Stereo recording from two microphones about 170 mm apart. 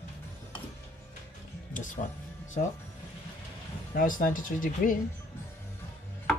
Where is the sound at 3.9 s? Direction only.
55° left (ahead or behind).